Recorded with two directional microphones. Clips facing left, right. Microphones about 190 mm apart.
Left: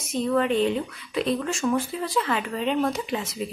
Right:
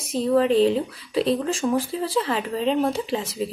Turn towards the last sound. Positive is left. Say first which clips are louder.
# right 3 dB
turn(degrees=-30)  # may be behind; listen again after turning